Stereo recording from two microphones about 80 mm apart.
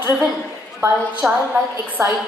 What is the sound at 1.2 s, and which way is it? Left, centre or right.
Speech, centre.